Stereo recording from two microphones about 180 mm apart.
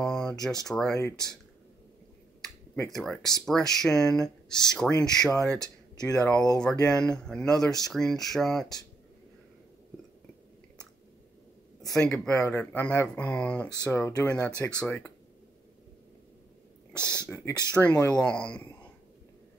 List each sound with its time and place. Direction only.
0.0 s a sound: 5° left (ahead or behind)
0.7 s speech: centre (ahead or behind)
0.9 s speech: 20° left (ahead or behind)
2.4 s speech: 5° left (ahead or behind)
5.6 s speech: 20° left (ahead or behind)
6.5 s speech: 5° left (ahead or behind)
11.9 s speech: 5° left (ahead or behind)
16.9 s speech: 15° right (ahead or behind)
17.2 s speech: 15° left (ahead or behind)
17.8 s speech: centre (ahead or behind)